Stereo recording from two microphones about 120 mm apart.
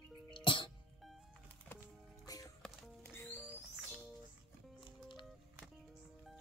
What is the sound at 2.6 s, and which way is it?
Music, centre (ahead or behind).